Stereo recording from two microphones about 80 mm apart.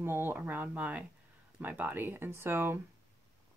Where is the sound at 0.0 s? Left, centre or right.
Right.